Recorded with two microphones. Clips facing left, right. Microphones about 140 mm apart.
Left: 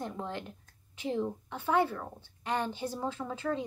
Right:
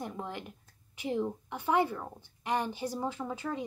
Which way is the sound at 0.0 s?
15° right (ahead or behind).